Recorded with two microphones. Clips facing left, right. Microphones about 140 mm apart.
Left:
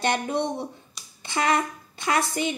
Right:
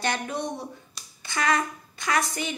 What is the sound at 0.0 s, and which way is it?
A woman's voice, 20° left (ahead or behind).